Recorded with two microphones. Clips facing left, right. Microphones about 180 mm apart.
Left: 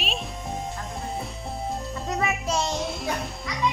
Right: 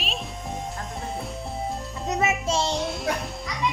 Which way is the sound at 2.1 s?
25° right (ahead or behind).